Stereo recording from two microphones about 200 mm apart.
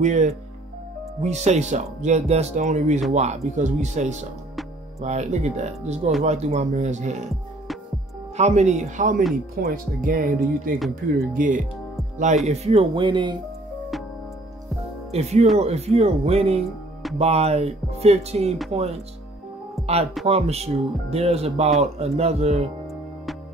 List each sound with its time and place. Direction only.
0.0 s speech: 35° right (ahead or behind)
8.4 s speech: 35° right (ahead or behind)
12.4 s speech: 30° right (ahead or behind)
15.0 s speech: 35° right (ahead or behind)
20.2 s speech: 30° right (ahead or behind)